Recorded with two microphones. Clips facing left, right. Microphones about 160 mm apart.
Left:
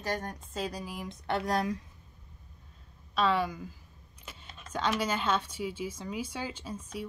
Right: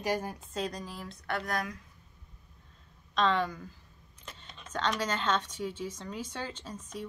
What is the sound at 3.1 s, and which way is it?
Speech, 10° left (ahead or behind).